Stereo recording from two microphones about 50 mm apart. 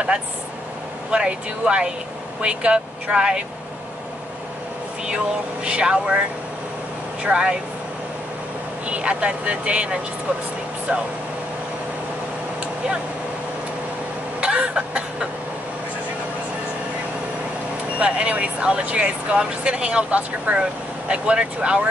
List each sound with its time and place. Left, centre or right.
1.1 s speech: centre
5.0 s speech: centre
7.2 s speech: right
8.8 s speech: right
14.4 s a sound: right
17.9 s speech: right